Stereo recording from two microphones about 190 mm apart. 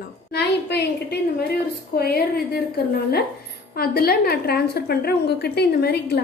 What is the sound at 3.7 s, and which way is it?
A woman's voice, 55° left (ahead or behind).